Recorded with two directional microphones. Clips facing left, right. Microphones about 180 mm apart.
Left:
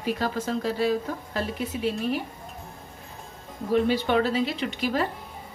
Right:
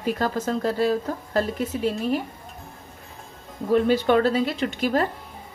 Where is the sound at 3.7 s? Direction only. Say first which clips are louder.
Right 4 dB; 50° right (ahead or behind).